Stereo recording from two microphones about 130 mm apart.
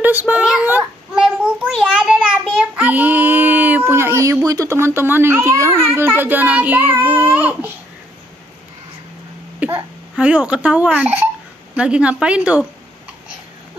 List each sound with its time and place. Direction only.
0.0 s a sound: 15° right (ahead or behind)
1.7 s child singing: 5° right (ahead or behind); by 4.4 s 20° right (ahead or behind)
4.5 s a child's voice: 25° right (ahead or behind)
9.6 s a child's voice: 20° right (ahead or behind)